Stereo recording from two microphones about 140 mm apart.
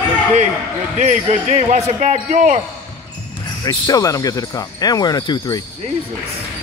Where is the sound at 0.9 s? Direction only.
60° right (ahead or behind).